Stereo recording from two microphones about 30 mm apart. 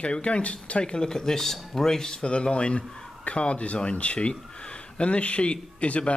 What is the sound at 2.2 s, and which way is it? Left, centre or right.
Speech, left.